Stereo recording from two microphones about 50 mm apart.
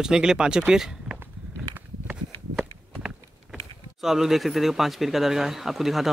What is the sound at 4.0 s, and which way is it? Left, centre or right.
Speech, centre.